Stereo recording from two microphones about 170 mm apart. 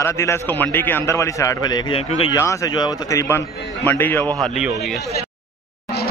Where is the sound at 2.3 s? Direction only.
20° left (ahead or behind).